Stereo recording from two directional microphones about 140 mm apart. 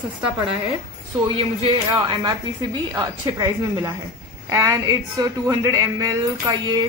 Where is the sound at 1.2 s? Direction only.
35° right (ahead or behind).